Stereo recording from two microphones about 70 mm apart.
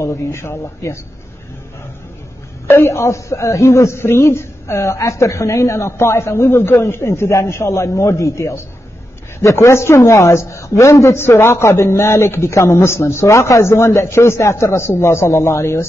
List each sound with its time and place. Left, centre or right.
0.0 s speech: left
2.7 s a man's voice: left